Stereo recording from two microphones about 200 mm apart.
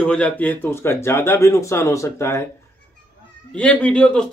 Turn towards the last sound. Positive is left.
turn(degrees=5)  # may be behind; listen again after turning